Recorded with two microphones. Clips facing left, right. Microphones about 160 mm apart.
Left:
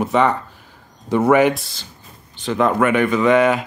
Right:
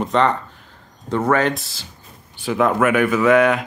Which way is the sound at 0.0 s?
5° left (ahead or behind).